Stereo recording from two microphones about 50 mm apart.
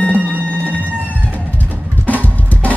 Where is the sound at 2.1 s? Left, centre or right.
Left.